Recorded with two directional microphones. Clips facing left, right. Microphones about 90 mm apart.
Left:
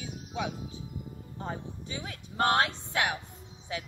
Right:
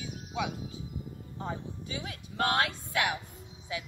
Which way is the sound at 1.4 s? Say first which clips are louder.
Even; 35° left (ahead or behind).